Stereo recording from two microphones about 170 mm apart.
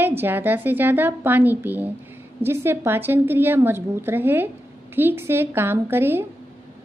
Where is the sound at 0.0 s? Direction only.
10° right (ahead or behind).